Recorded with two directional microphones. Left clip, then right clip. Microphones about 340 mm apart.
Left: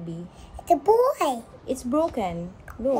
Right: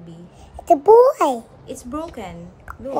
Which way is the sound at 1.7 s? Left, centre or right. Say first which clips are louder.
Left 6 dB; centre.